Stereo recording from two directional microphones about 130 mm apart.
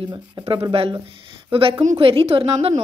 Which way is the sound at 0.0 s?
35° right (ahead or behind).